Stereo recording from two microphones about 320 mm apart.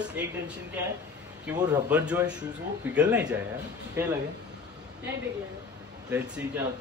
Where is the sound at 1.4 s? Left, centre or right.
Centre.